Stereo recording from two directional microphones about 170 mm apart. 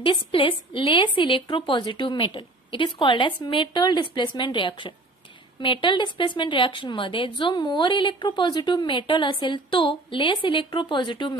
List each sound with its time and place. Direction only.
0.0 s a woman's voice: 30° left (ahead or behind)